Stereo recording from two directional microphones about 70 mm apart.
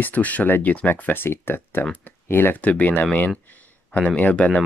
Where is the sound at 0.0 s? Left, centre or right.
Left.